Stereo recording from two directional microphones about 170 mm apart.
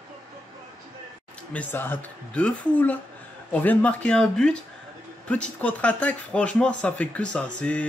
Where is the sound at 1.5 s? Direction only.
10° left (ahead or behind).